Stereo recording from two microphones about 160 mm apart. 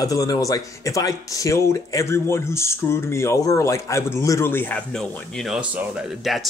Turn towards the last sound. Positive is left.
turn(degrees=0)  # may be behind; listen again after turning